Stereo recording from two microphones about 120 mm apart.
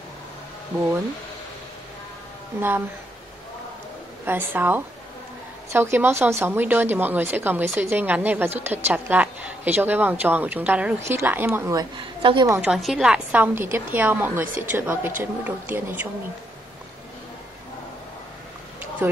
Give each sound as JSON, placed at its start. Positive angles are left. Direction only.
{"t": 0.7, "sound": "speech", "side_deg": -20}
{"t": 4.3, "sound": "a woman's voice", "side_deg": -15}
{"t": 12.2, "sound": "a woman's voice", "side_deg": -45}
{"t": 12.6, "sound": "a woman's voice", "side_deg": -5}